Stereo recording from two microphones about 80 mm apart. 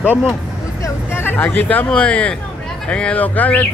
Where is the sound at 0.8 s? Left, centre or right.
Left.